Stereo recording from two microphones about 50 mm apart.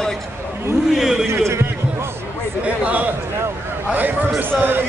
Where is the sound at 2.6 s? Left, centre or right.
Right.